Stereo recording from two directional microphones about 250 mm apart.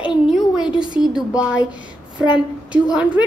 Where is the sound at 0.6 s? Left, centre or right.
Centre.